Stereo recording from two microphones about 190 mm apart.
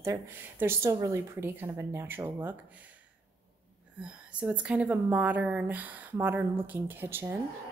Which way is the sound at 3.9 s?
5° right (ahead or behind).